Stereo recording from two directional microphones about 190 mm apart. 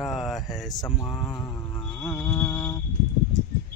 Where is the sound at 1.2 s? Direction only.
15° left (ahead or behind).